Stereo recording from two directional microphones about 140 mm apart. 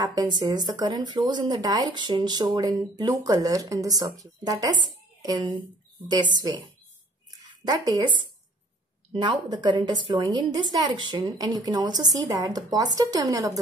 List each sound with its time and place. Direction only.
0.0 s speech: 25° right (ahead or behind)
7.2 s a sound: 25° right (ahead or behind)
9.1 s speech: 35° right (ahead or behind)